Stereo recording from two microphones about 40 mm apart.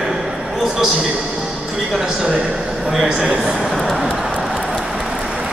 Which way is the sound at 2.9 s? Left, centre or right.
Centre.